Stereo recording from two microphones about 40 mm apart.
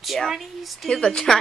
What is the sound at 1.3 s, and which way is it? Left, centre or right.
Speech, centre.